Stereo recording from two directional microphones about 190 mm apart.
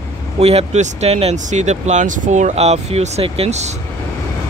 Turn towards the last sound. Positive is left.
turn(degrees=-35)  # may be behind; listen again after turning